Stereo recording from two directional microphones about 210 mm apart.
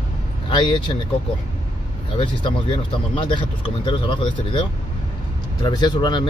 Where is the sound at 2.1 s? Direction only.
25° left (ahead or behind).